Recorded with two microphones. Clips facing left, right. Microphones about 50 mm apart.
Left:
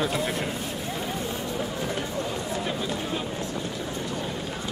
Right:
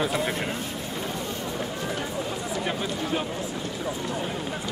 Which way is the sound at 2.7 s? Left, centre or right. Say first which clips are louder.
Right 1 dB; centre.